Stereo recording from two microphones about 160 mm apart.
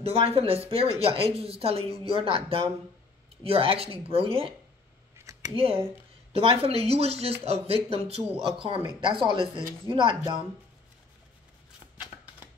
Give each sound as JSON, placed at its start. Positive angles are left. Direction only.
{"t": 0.0, "sound": "speech", "side_deg": -40}
{"t": 5.6, "sound": "speech", "side_deg": -35}